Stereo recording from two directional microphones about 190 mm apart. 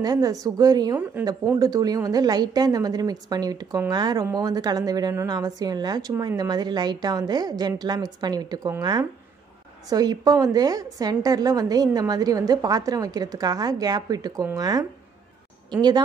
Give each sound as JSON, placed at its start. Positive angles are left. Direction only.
{"t": 0.0, "sound": "a woman's voice", "side_deg": -20}